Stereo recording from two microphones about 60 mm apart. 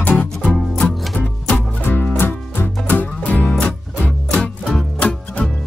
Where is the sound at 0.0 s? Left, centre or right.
Left.